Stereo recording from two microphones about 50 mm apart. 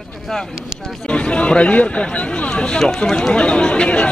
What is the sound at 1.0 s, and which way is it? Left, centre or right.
Speech, left.